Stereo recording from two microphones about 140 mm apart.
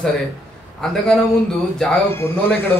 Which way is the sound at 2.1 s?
15° left (ahead or behind).